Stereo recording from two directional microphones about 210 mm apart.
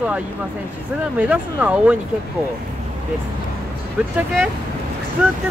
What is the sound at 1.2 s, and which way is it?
Speech, 5° right (ahead or behind).